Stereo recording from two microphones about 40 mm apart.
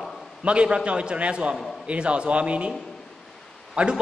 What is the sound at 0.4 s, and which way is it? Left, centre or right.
A man's voice, right.